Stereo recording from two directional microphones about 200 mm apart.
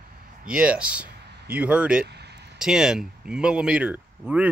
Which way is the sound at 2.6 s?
5° right (ahead or behind).